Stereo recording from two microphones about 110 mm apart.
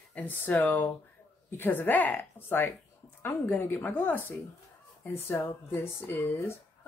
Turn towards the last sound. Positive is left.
turn(degrees=20)  # may be behind; listen again after turning